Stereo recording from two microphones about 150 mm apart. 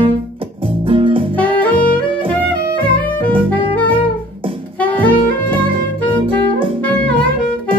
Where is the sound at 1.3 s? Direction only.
10° left (ahead or behind).